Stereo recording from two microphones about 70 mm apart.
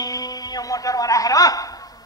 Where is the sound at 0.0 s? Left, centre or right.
Left.